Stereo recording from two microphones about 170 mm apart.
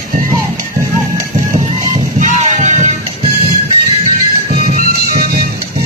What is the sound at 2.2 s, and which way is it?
Music, 50° right (ahead or behind).